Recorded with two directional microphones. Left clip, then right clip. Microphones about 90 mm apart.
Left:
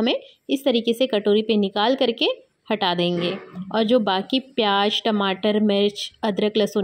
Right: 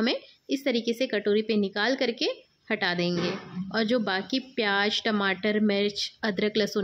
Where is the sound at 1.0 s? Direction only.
30° left (ahead or behind).